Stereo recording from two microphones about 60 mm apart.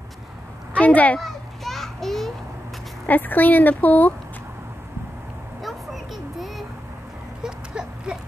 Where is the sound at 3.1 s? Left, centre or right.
Left.